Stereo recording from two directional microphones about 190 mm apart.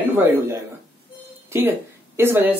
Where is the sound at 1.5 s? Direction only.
10° right (ahead or behind).